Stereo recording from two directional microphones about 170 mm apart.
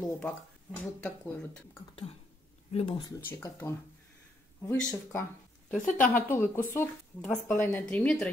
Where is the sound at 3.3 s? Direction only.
15° left (ahead or behind).